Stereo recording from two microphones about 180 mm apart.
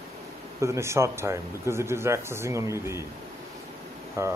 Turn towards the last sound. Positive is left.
turn(degrees=-15)  # may be behind; listen again after turning